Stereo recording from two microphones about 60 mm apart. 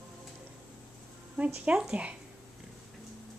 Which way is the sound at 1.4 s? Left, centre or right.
Centre.